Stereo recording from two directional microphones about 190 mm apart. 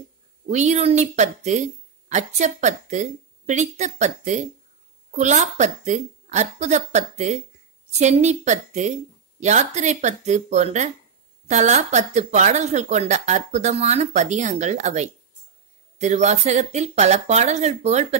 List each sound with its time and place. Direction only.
0.5 s speech: 40° right (ahead or behind)